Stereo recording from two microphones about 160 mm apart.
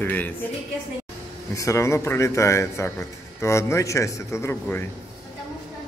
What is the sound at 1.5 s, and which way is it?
A man's voice, 20° left (ahead or behind).